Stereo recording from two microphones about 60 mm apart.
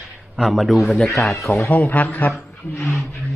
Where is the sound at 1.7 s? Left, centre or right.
Left.